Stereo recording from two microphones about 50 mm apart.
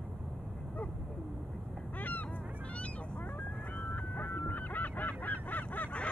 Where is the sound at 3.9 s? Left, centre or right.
Left.